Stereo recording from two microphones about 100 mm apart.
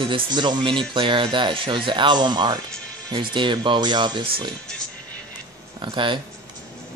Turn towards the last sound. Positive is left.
turn(degrees=-55)  # may be behind; listen again after turning